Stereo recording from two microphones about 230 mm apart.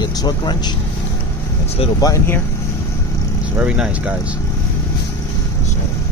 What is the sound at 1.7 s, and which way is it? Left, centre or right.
Speech, centre.